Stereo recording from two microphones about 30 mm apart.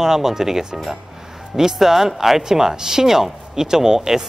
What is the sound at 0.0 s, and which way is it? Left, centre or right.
Speech, centre.